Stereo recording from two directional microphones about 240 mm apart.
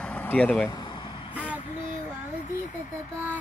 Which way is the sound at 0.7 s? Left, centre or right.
Centre.